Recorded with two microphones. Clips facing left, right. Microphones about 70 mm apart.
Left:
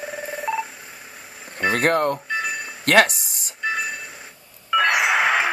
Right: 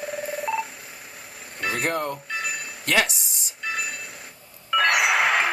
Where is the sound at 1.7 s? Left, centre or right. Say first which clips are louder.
Left 7 dB; left.